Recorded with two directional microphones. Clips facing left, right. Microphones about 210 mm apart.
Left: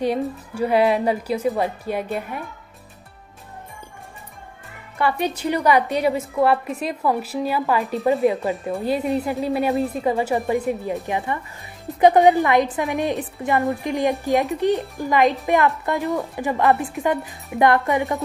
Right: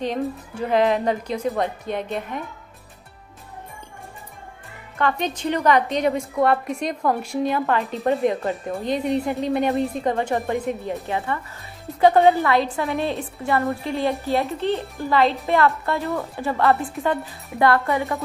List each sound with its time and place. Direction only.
0.0 s a woman's voice: 10° left (ahead or behind)
4.9 s a woman's voice: 10° left (ahead or behind)
10.5 s a woman's voice: 15° left (ahead or behind)